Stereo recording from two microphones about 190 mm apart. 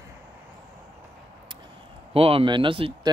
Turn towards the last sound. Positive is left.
turn(degrees=-25)  # may be behind; listen again after turning